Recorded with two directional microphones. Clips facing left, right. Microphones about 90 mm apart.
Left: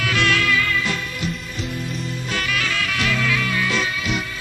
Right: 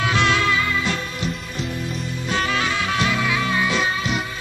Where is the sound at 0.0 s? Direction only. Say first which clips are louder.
Right 1 dB; 25° right (ahead or behind).